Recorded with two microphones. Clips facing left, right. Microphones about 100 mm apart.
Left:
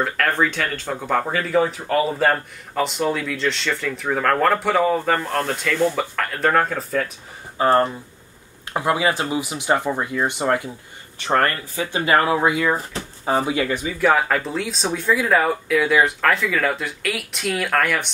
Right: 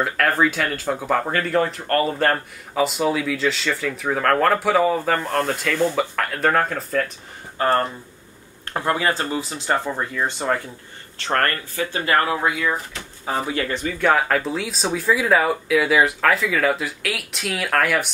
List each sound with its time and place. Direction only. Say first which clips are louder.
0.0 s speech: right 1 dB; 5° right (ahead or behind)
7.5 s speech: left 3 dB; 15° left (ahead or behind)
12.5 s speech: left 3 dB; 35° left (ahead or behind)
13.5 s speech: left 2 dB; 15° left (ahead or behind); by 18.1 s 5° right (ahead or behind)